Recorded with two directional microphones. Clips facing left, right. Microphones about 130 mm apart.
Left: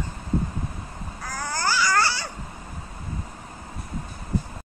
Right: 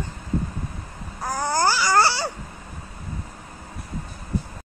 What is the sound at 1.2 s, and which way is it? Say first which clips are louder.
Babbling: right 6 dB; 30° right (ahead or behind).